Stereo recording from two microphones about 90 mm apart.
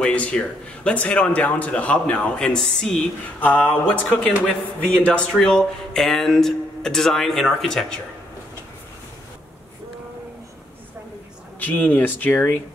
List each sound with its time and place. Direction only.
0.0 s a man's voice: 10° left (ahead or behind)
3.3 s a man's voice: 20° left (ahead or behind)
11.6 s speech: 20° left (ahead or behind)